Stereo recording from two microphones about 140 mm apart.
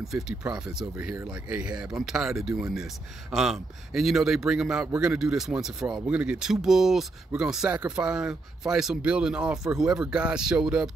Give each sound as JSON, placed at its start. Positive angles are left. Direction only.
{"t": 0.0, "sound": "speech", "side_deg": -5}